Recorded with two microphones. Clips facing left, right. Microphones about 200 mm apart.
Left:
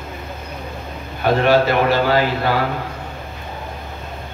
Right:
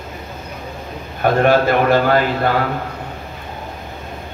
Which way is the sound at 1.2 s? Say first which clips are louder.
Right 1 dB; 50° right (ahead or behind).